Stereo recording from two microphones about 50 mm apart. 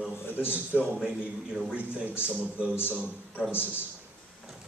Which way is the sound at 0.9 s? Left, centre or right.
Centre.